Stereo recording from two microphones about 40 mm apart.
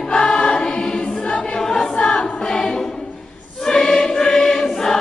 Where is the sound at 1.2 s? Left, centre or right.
Left.